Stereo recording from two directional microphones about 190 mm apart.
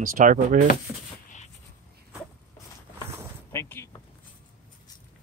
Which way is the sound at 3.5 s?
15° left (ahead or behind).